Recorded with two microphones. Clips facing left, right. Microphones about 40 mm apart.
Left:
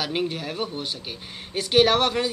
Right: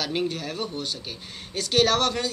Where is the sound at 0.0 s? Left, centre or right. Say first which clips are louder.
Left 1 dB; centre.